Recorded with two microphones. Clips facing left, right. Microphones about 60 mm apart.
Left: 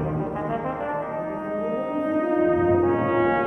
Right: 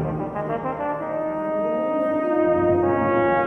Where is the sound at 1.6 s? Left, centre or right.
Right.